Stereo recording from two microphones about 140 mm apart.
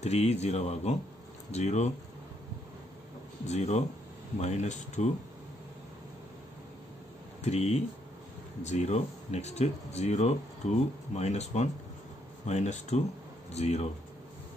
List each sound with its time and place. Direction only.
0.0 s speech: 50° left (ahead or behind)
3.4 s speech: 50° left (ahead or behind)
7.4 s speech: 50° left (ahead or behind)